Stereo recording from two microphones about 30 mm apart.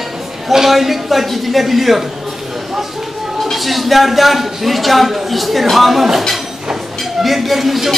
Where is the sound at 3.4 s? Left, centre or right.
Centre.